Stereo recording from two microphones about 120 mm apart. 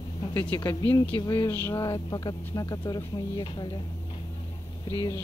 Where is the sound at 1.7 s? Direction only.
35° left (ahead or behind).